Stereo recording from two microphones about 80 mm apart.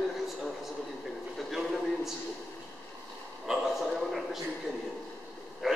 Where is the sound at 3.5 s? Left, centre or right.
Centre.